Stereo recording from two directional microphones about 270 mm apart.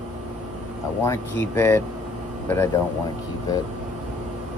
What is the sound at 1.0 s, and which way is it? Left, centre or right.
Speech, centre.